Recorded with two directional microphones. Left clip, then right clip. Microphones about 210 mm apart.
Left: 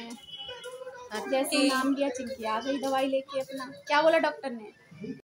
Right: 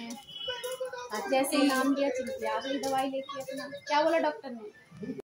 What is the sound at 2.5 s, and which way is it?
Speech, 40° left (ahead or behind).